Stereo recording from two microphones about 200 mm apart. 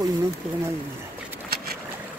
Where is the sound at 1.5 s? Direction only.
50° right (ahead or behind).